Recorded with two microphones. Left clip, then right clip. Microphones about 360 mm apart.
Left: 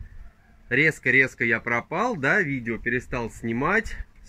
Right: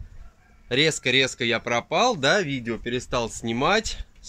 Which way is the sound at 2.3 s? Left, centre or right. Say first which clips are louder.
Even; right.